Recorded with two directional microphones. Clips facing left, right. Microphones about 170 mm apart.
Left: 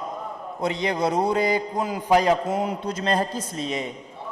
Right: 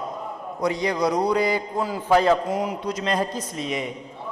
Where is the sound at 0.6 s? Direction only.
25° left (ahead or behind).